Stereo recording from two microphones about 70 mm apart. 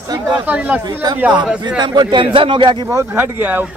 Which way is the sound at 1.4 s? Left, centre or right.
Centre.